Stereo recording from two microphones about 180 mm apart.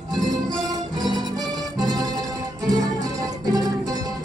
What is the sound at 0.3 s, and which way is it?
Music, 20° right (ahead or behind).